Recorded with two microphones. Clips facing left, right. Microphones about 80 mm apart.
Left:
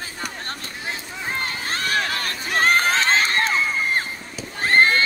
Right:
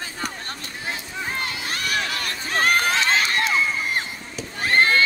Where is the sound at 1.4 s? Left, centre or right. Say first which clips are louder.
Left 2 dB; left.